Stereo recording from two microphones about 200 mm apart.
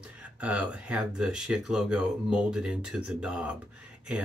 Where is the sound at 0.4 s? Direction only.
5° right (ahead or behind).